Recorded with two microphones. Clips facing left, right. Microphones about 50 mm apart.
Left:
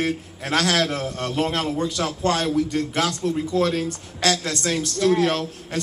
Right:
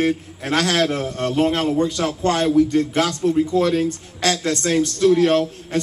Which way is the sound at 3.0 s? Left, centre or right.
Right.